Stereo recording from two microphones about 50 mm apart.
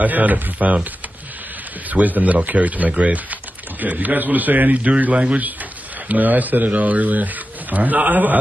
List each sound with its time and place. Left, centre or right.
0.0 s a man's voice: right
1.9 s a man's voice: right